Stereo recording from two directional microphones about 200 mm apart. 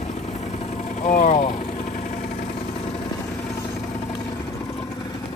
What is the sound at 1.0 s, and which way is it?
Speech, 35° left (ahead or behind).